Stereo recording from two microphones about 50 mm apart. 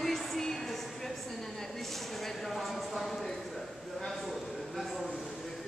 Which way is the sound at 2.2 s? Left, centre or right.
Centre.